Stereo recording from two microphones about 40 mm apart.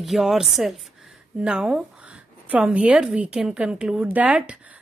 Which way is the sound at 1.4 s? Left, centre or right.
Centre.